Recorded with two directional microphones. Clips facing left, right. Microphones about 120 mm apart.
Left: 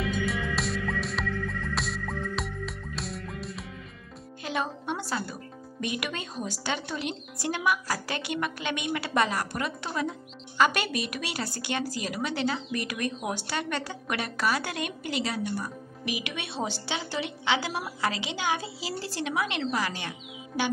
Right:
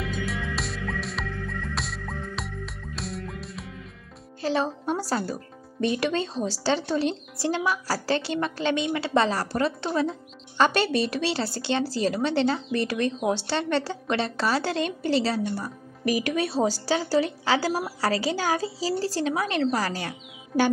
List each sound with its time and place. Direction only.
0.0 s music: centre (ahead or behind)
4.4 s speech: 35° right (ahead or behind)